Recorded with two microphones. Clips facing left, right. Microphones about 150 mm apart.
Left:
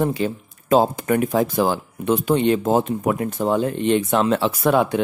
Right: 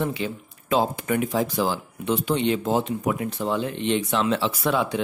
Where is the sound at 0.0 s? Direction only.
45° left (ahead or behind).